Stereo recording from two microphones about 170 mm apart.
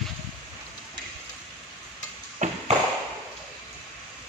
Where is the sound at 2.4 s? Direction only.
45° right (ahead or behind).